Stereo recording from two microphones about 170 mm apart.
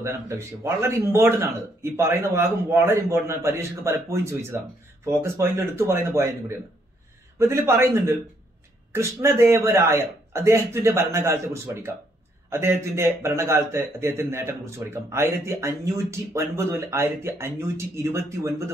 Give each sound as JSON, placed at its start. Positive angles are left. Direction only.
{"t": 0.0, "sound": "speech", "side_deg": -15}
{"t": 7.3, "sound": "speech", "side_deg": -15}